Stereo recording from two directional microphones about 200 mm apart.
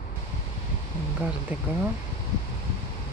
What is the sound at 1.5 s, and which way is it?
Speech, 5° right (ahead or behind).